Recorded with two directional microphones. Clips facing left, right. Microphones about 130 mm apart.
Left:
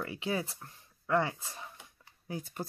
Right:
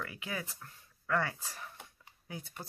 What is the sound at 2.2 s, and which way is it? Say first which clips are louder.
Speech: left 6 dB; 40° left (ahead or behind).